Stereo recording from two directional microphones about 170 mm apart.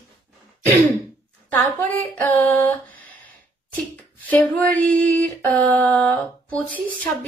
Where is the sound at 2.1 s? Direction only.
10° left (ahead or behind).